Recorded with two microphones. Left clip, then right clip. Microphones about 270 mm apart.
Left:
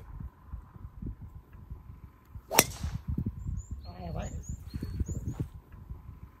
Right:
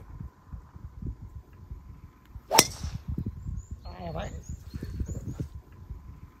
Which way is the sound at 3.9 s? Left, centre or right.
Centre.